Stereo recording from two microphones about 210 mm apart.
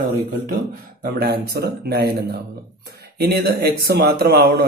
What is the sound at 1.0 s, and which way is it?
Speech, 45° right (ahead or behind).